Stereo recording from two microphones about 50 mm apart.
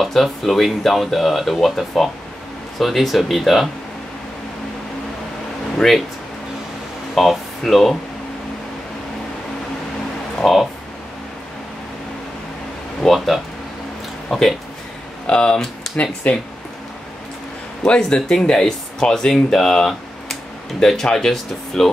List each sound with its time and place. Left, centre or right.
0.0 s speech: centre
5.8 s speech: centre
7.2 s speech: centre
10.4 s speech: centre
13.0 s speech: centre
15.2 s speech: centre
17.8 s speech: left